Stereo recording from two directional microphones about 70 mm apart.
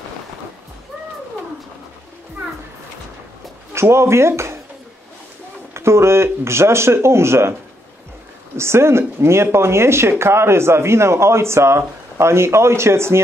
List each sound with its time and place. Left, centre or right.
3.8 s speech: right
5.8 s speech: right
8.5 s speech: right